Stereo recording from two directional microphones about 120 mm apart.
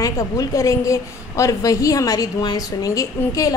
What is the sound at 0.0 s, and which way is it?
A woman's voice, 30° left (ahead or behind).